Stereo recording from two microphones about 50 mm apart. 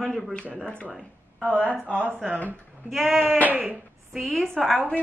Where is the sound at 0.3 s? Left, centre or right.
Left.